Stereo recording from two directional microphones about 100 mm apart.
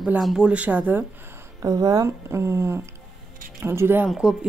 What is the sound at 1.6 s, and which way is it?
Speech, 40° right (ahead or behind).